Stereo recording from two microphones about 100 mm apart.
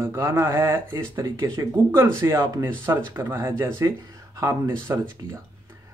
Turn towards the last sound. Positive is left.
turn(degrees=-30)  # may be behind; listen again after turning